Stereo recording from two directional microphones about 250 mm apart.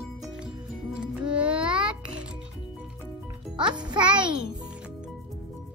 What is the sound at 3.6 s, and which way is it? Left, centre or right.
Music, centre.